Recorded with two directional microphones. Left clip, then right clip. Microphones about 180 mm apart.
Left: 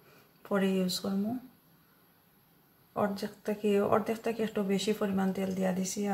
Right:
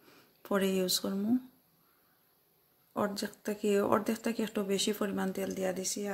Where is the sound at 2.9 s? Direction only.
60° right (ahead or behind).